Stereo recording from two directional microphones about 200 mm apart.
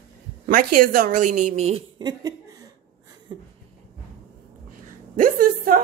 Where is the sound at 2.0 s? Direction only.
20° right (ahead or behind).